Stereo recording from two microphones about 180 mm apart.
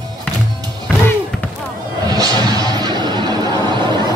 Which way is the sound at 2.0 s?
20° right (ahead or behind).